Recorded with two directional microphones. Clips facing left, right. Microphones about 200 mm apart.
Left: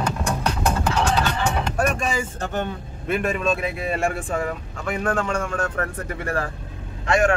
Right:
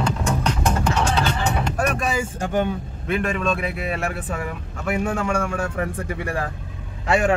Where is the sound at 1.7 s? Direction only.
Centre (ahead or behind).